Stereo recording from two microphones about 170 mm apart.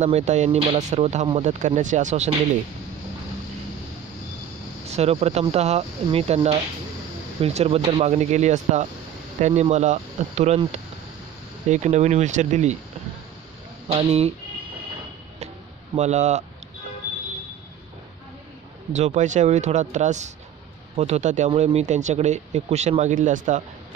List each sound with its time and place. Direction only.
0.0 s speech: 45° right (ahead or behind)
4.8 s speech: 40° right (ahead or behind)
13.8 s speech: 35° right (ahead or behind)
15.3 s a sound: 40° right (ahead or behind)
18.9 s speech: 45° right (ahead or behind)